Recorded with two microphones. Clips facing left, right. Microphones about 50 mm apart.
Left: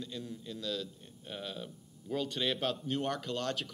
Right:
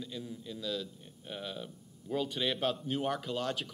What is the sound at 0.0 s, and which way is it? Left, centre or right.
A man's voice, centre.